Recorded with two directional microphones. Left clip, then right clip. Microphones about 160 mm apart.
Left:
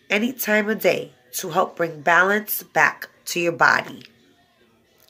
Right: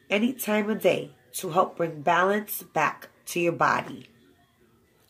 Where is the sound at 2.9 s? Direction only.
35° left (ahead or behind).